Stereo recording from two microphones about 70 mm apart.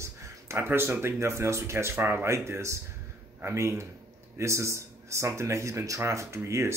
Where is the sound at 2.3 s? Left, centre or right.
Right.